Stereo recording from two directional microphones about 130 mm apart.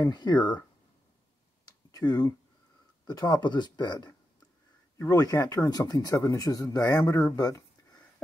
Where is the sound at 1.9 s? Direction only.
30° left (ahead or behind).